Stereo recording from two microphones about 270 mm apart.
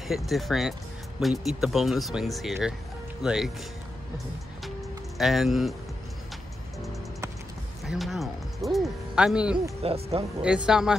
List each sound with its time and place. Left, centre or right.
0.1 s speech: centre
4.6 s music: centre
7.8 s speech: centre
9.8 s speech: right
10.4 s speech: centre